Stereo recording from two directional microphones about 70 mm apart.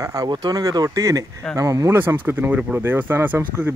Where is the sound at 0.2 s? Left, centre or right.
Right.